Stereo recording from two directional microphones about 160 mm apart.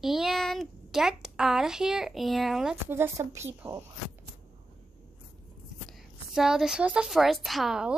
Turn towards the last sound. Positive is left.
turn(degrees=-5)  # may be behind; listen again after turning